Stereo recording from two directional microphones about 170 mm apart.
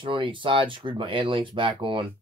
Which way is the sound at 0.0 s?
30° right (ahead or behind).